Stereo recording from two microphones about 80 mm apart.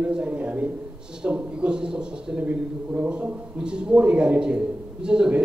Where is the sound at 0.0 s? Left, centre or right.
Centre.